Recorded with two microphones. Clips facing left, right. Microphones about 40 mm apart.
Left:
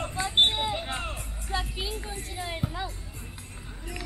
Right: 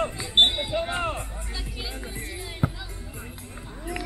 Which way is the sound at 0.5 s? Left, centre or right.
Centre.